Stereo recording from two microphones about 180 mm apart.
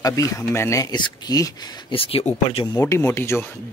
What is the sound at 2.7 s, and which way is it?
Speech, 15° left (ahead or behind).